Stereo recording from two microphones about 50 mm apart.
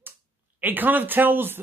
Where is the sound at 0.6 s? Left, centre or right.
Right.